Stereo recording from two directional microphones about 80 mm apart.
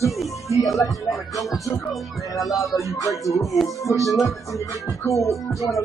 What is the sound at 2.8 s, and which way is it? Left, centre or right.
Music, left.